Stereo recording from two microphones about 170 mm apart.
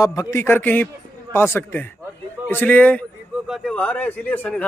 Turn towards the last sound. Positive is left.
turn(degrees=5)  # may be behind; listen again after turning